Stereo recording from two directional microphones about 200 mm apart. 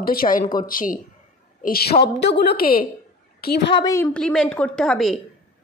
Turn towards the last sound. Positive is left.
turn(degrees=0)  # may be behind; listen again after turning